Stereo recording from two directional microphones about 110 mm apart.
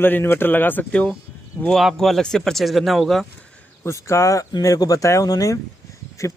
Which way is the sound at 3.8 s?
25° left (ahead or behind).